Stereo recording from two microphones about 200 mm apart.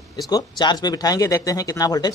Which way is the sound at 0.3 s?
20° left (ahead or behind).